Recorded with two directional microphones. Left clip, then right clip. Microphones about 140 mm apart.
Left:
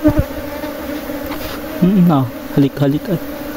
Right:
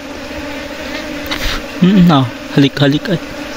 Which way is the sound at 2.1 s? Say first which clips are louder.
Right 4 dB; 5° left (ahead or behind).